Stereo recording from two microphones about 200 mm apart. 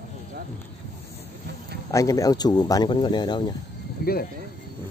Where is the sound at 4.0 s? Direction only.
50° left (ahead or behind).